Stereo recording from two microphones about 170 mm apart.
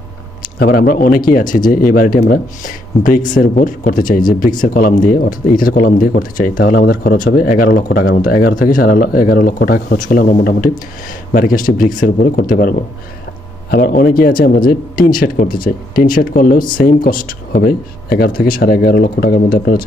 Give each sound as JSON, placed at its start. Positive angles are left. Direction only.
{"t": 0.6, "sound": "speech", "side_deg": 60}